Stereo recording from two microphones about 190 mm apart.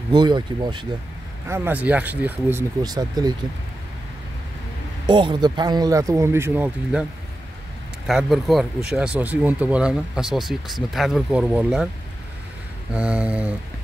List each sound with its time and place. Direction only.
0.1 s speech: 25° right (ahead or behind)
1.5 s speech: 10° right (ahead or behind)
2.8 s speech: 20° right (ahead or behind)
5.0 s speech: 25° right (ahead or behind); by 7.1 s 5° right (ahead or behind)
8.1 s speech: centre (ahead or behind)
12.9 s speech: 5° right (ahead or behind)